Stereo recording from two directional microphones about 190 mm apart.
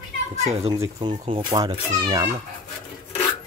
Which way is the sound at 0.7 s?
20° right (ahead or behind).